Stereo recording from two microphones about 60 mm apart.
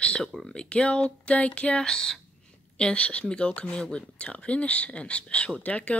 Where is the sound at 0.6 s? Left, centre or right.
Centre.